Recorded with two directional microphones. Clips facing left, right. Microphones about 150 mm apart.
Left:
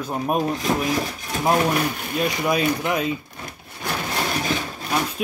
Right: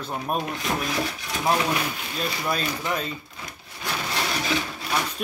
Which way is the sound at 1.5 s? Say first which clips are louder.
Left 4 dB; 50° left (ahead or behind).